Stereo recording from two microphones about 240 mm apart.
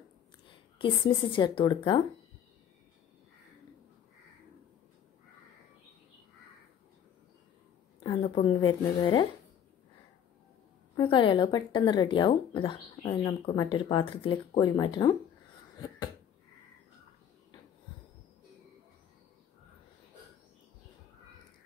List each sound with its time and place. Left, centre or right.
0.5 s speech: left
8.0 s speech: left
11.0 s speech: centre